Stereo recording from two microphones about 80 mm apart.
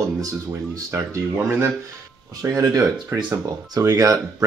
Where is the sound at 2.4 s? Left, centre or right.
Right.